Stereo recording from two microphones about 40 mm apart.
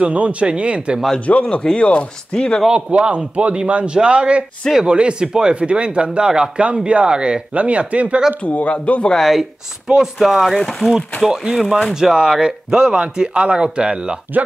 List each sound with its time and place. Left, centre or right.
0.0 s speech: right
1.2 s speech: left
1.6 s speech: left
2.7 s speech: right
6.6 s speech: right
7.5 s speech: right
8.5 s speech: left
9.2 s speech: centre
10.8 s speech: right
11.2 s speech: centre
14.3 s speech: right